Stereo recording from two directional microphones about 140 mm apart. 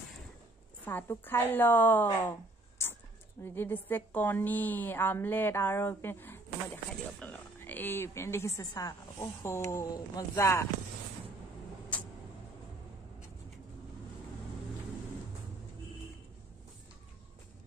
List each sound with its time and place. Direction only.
0.8 s a woman's voice: 15° left (ahead or behind)
3.4 s a woman's voice: 15° left (ahead or behind)